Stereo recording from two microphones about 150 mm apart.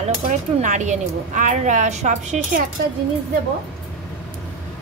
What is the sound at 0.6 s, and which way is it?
A woman's voice, 55° right (ahead or behind).